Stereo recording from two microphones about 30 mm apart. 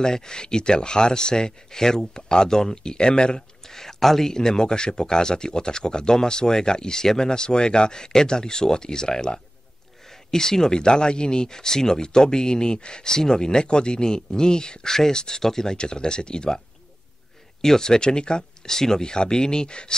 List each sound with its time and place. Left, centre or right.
0.0 s speech: left
3.6 s speech: centre
4.4 s speech: left
18.7 s speech: centre